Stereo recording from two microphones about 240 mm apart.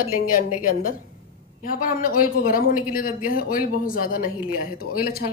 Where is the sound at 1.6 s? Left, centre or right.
Left.